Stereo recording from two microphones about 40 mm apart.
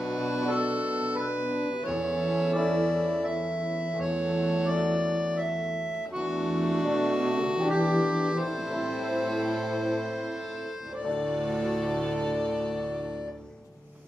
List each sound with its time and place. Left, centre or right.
0.2 s music: centre
1.9 s organ: centre
2.6 s organ: centre
5.1 s music: centre
6.3 s organ: centre
8.7 s music: centre
11.3 s music: centre